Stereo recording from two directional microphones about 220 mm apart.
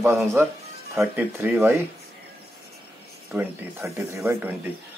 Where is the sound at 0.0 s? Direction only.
10° right (ahead or behind).